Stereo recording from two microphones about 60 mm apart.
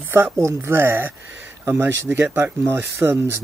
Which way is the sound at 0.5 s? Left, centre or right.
Right.